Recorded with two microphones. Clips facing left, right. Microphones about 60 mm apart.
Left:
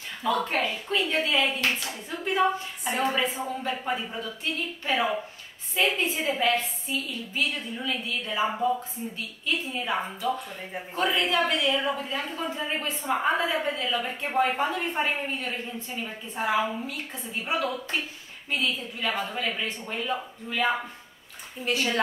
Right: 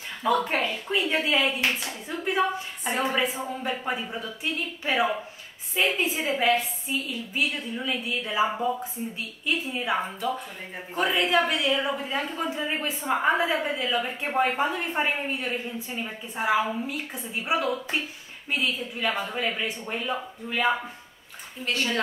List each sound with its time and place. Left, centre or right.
0.2 s a woman's voice: centre
21.6 s a woman's voice: centre